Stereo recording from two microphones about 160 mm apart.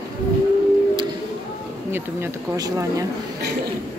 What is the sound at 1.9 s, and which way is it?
Speech, 20° right (ahead or behind).